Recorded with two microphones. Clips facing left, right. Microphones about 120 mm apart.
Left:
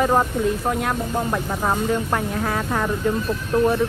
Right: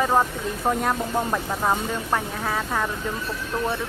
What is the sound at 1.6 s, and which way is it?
Speech, 5° left (ahead or behind).